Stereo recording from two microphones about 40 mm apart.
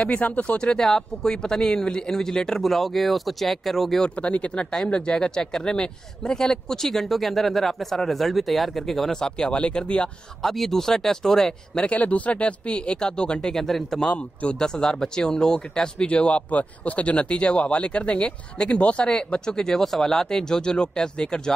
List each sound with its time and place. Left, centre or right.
0.2 s speech: left
0.6 s speech: left; by 4.0 s centre
4.1 s speech: left; by 9.5 s centre
9.5 s speech: left
10.4 s speech: centre
11.9 s speech: left
16.1 s speech: left